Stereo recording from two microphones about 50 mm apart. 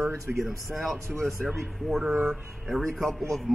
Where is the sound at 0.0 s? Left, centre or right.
Right.